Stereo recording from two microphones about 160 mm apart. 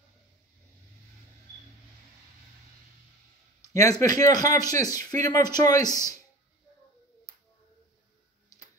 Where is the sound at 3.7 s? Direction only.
20° left (ahead or behind).